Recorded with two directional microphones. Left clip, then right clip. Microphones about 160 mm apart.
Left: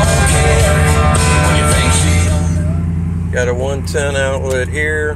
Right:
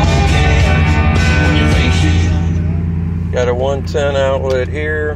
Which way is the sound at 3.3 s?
15° left (ahead or behind).